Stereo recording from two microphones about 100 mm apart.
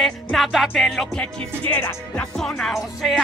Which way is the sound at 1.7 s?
20° left (ahead or behind).